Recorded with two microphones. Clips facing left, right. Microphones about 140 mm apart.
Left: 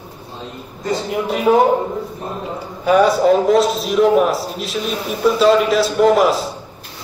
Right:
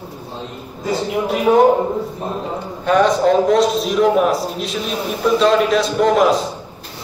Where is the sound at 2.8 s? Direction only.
10° left (ahead or behind).